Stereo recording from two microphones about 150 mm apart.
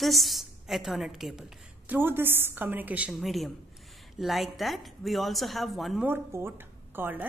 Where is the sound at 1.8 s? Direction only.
15° right (ahead or behind).